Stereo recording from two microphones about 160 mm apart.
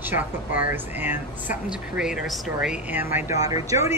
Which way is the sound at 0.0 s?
10° right (ahead or behind).